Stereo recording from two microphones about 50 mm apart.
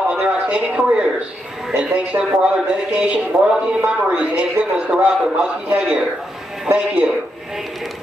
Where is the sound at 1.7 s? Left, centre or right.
Centre.